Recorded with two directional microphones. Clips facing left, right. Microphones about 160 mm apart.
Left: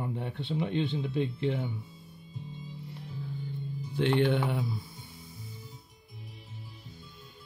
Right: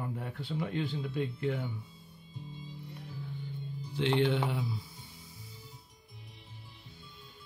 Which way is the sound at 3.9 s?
55° left (ahead or behind).